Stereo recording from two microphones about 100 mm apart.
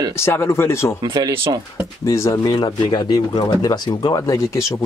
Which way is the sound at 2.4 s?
50° left (ahead or behind).